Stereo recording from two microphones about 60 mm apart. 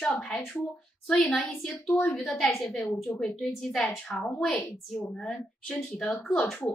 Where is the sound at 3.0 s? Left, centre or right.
Left.